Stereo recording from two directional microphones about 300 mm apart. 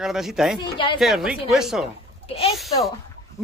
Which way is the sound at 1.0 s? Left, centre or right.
Centre.